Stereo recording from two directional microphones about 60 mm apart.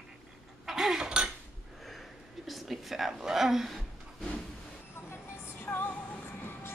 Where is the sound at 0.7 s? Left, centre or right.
Centre.